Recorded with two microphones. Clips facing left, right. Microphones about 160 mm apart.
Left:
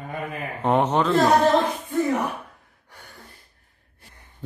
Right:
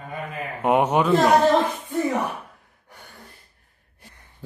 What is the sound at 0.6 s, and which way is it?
Speech, 10° right (ahead or behind).